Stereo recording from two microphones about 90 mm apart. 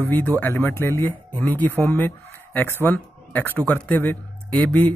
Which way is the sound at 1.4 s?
20° left (ahead or behind).